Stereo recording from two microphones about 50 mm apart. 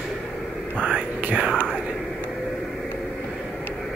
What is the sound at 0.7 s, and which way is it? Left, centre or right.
Speech, right.